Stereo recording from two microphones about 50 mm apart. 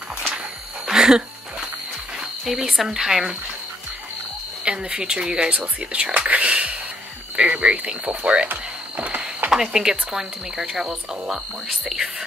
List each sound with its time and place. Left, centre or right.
0.8 s a sound: centre
2.4 s speech: centre
4.6 s speech: centre
8.5 s music: right
9.5 s speech: centre